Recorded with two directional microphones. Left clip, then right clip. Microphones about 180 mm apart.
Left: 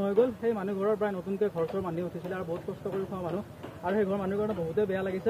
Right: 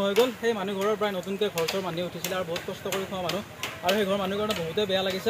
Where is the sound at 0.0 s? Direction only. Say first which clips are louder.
Right 3 dB; 20° right (ahead or behind).